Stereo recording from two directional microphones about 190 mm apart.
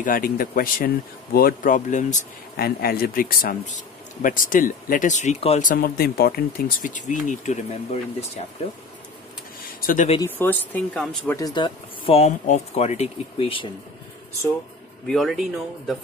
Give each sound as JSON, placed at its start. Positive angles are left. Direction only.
{"t": 0.0, "sound": "speech", "side_deg": 50}
{"t": 9.8, "sound": "a sound", "side_deg": 50}
{"t": 10.2, "sound": "speech", "side_deg": 10}
{"t": 11.3, "sound": "speech", "side_deg": 20}
{"t": 15.0, "sound": "speech", "side_deg": 0}